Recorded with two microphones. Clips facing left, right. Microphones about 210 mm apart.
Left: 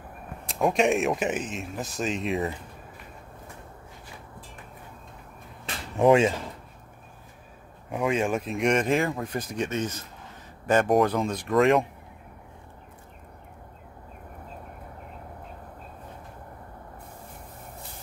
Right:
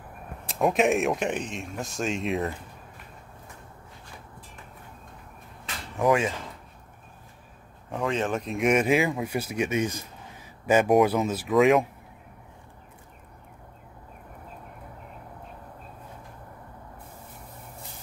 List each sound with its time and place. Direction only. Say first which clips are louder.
0.5 s speech: even; centre (ahead or behind)
5.9 s speech: left 4 dB; 25° left (ahead or behind)
7.9 s speech: left 2 dB; 10° left (ahead or behind)